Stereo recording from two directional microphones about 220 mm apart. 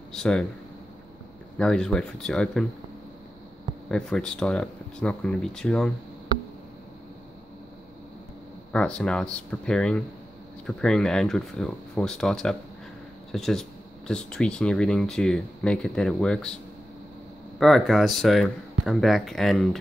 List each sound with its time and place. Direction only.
0.1 s speech: 5° left (ahead or behind)
1.6 s speech: 5° left (ahead or behind)
3.9 s speech: 5° left (ahead or behind)
8.7 s speech: 5° left (ahead or behind)
17.6 s speech: centre (ahead or behind)